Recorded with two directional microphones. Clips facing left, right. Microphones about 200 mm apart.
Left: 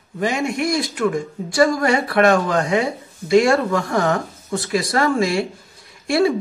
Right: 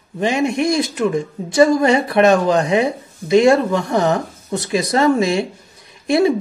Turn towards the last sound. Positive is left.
turn(degrees=-20)  # may be behind; listen again after turning